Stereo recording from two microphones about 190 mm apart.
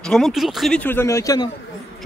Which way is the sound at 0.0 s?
Centre (ahead or behind).